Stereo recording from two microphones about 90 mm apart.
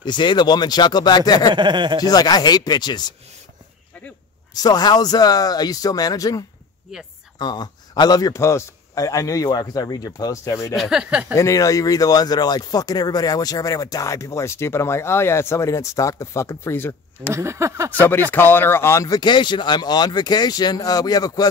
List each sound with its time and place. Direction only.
0.0 s speech: 60° left (ahead or behind)
1.5 s speech: 55° right (ahead or behind)
2.0 s speech: 45° left (ahead or behind)
4.6 s speech: 45° left (ahead or behind)
6.9 s speech: 10° right (ahead or behind)
7.3 s speech: 50° left (ahead or behind)
8.4 s speech: 30° left (ahead or behind)
10.7 s speech: 5° right (ahead or behind)
11.3 s speech: 35° left (ahead or behind)
17.3 s speech: 30° right (ahead or behind)
18.3 s speech: 25° left (ahead or behind)
19.0 s speech: 55° left (ahead or behind)